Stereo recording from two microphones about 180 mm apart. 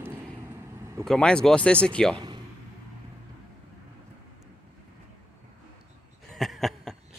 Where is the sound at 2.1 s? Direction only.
25° right (ahead or behind).